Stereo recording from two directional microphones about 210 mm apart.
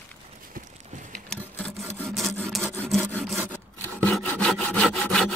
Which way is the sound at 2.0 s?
Centre (ahead or behind).